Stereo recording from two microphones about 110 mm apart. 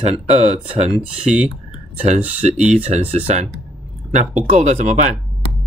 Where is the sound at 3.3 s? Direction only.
90° right.